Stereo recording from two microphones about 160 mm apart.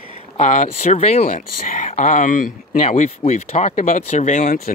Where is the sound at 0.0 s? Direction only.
50° left (ahead or behind).